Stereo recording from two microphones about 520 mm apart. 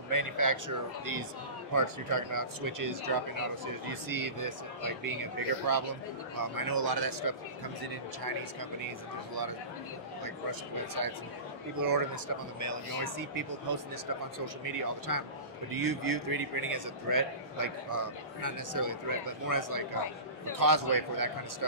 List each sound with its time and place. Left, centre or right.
0.1 s a man's voice: right
8.8 s speech: right
11.8 s a man's voice: right